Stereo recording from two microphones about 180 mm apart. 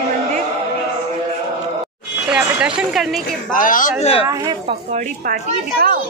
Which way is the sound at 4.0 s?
35° left (ahead or behind).